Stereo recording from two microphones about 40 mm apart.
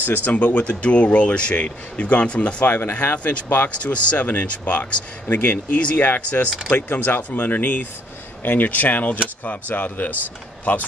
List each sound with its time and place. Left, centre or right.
0.0 s speech: left
2.6 s speech: left
3.7 s speech: left
5.3 s speech: left
6.2 s speech: left